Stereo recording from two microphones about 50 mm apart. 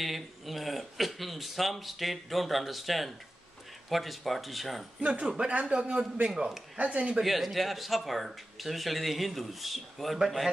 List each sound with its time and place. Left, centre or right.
0.0 s speech: centre
5.5 s a man's voice: centre
7.2 s speech: centre